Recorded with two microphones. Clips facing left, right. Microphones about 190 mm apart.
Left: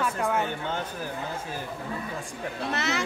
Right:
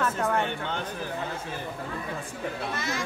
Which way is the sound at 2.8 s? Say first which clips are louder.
Left 3 dB; 70° left (ahead or behind).